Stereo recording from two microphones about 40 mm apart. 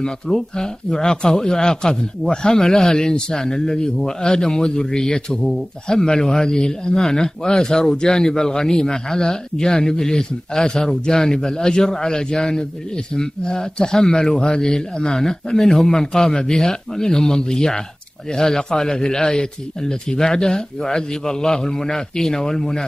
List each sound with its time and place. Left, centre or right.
0.0 s speech: centre
5.4 s speech: centre
5.9 s speech: centre